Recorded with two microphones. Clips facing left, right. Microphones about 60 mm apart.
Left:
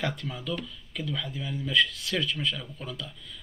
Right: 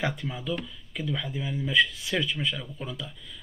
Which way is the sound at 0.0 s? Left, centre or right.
Centre.